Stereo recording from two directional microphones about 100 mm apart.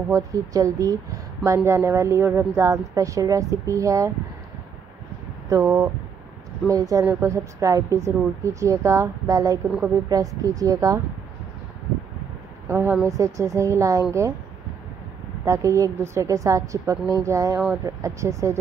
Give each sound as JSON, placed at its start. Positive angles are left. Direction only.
{"t": 0.1, "sound": "a woman's voice", "side_deg": -35}
{"t": 5.5, "sound": "a woman's voice", "side_deg": -30}
{"t": 12.6, "sound": "a woman's voice", "side_deg": -25}
{"t": 15.4, "sound": "a woman's voice", "side_deg": -30}